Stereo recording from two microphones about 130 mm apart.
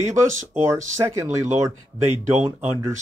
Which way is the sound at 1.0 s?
20° right (ahead or behind).